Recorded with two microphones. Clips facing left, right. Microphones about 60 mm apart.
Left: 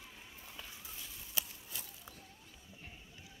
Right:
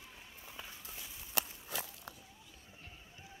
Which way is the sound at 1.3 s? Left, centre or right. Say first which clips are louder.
Right 6 dB; right.